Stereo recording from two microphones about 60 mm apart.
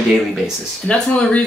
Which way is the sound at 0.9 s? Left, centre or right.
Left.